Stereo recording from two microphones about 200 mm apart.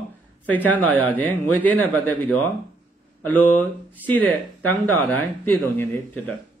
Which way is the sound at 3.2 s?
10° left (ahead or behind).